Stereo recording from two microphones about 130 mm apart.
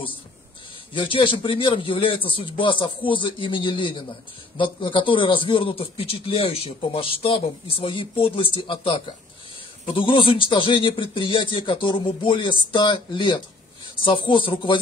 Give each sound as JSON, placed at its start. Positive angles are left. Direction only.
{"t": 0.9, "sound": "a man's voice", "side_deg": 40}